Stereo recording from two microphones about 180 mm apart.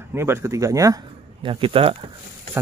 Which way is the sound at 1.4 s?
30° right (ahead or behind).